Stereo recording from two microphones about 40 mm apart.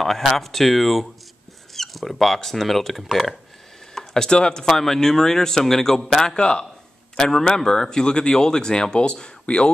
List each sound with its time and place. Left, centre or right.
0.0 s a man's voice: centre; by 6.6 s left
7.2 s a man's voice: centre